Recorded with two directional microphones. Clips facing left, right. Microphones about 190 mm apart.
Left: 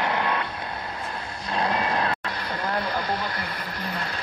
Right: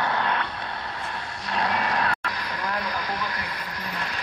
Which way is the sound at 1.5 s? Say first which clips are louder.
Left 1 dB; 30° left (ahead or behind).